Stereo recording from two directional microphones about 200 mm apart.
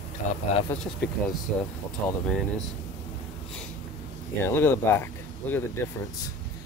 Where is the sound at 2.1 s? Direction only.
5° left (ahead or behind).